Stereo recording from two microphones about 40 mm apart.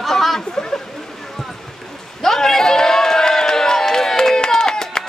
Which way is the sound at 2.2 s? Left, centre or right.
Centre.